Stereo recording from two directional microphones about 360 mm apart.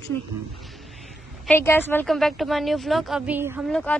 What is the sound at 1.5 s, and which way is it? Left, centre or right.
A woman's voice, centre.